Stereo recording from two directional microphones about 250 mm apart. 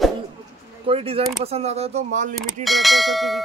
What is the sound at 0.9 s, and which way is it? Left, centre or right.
Speech, right.